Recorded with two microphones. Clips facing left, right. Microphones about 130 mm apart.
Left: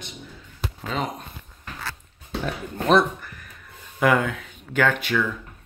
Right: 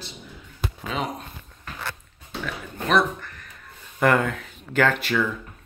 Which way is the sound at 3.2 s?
5° left (ahead or behind).